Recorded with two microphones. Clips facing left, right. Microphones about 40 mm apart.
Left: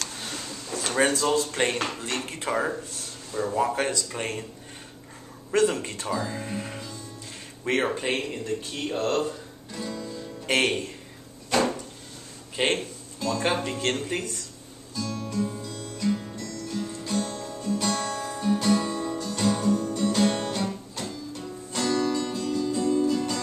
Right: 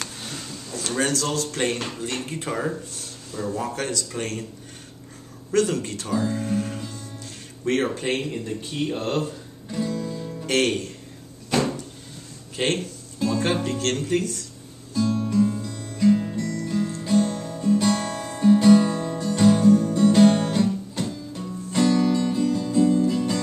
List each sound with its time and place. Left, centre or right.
0.2 s a sound: centre
0.8 s a man's voice: left
5.5 s a man's voice: centre
6.1 s speech: centre
6.4 s music: centre
7.6 s a man's voice: centre
8.7 s speech: centre
9.7 s music: centre
10.4 s speech: centre
12.5 s a man's voice: centre
15.2 s music: centre